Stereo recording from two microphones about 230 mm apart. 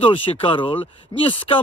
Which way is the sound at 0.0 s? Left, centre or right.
Left.